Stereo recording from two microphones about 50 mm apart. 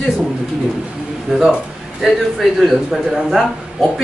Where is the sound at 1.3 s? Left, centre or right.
Centre.